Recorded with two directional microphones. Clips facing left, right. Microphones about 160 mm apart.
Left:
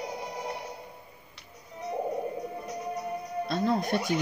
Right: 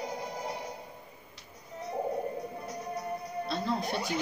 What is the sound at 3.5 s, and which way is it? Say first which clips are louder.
Music: left 5 dB; 50° left (ahead or behind).